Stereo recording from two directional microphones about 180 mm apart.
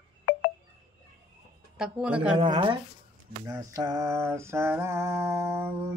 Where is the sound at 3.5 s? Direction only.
20° right (ahead or behind).